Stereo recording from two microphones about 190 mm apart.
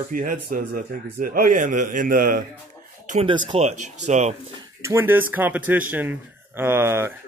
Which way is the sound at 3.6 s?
35° right (ahead or behind).